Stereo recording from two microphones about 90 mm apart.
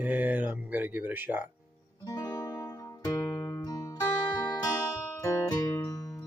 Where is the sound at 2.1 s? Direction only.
45° left (ahead or behind).